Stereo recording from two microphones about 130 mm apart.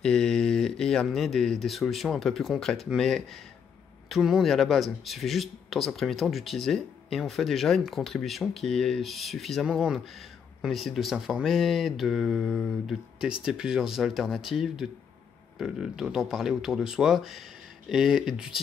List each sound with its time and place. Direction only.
0.0 s speech: 5° left (ahead or behind)